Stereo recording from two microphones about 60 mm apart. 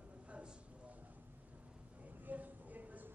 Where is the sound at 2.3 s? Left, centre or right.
Right.